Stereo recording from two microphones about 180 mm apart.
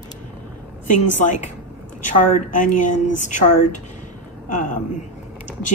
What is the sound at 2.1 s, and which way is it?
A woman's voice, 45° left (ahead or behind).